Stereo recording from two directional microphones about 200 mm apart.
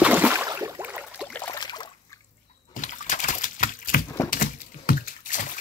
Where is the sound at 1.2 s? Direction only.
10° left (ahead or behind).